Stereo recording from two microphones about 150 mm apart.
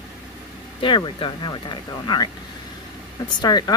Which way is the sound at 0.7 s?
35° left (ahead or behind).